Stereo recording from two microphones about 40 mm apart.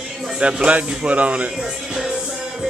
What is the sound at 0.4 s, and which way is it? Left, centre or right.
Speech, right.